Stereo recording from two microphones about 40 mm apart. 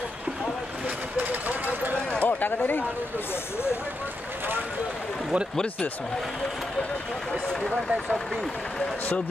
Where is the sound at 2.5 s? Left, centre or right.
Left.